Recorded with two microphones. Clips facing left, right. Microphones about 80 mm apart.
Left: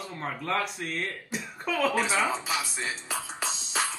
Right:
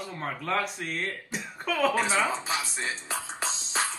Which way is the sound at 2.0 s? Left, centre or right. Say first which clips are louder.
Even; right.